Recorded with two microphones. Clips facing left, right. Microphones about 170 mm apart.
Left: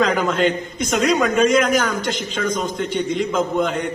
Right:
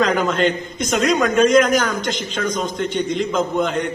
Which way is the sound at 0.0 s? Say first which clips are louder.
Even; 5° left (ahead or behind).